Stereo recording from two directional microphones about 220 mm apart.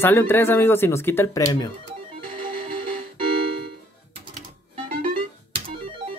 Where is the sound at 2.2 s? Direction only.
25° right (ahead or behind).